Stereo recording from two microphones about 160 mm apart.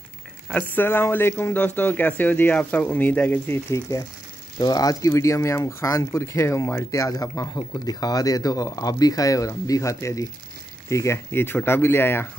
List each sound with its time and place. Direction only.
0.5 s speech: 10° left (ahead or behind)